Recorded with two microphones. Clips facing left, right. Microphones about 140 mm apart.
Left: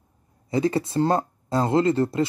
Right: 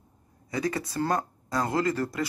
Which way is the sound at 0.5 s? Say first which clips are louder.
Left 7 dB; 25° left (ahead or behind).